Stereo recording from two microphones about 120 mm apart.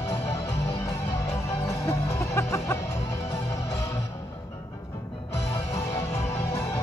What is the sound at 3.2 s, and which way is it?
Music, 65° left (ahead or behind).